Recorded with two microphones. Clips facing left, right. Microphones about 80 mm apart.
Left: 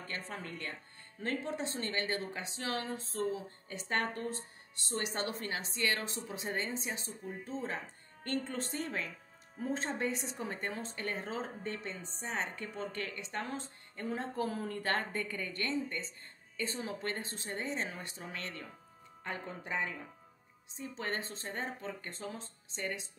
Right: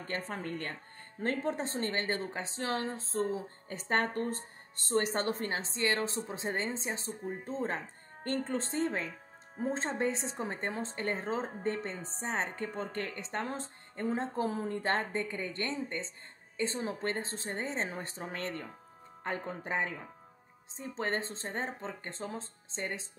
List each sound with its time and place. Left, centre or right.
0.0 s a woman's voice: right